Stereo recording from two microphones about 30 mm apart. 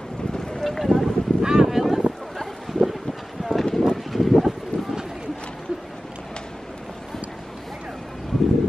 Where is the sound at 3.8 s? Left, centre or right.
Centre.